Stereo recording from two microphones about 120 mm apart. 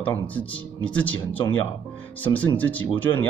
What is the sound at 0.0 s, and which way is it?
Speech, 15° left (ahead or behind).